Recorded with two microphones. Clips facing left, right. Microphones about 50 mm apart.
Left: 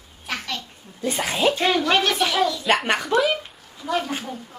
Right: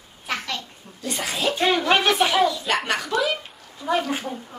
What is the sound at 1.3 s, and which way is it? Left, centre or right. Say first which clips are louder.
Speech: left 4 dB; left.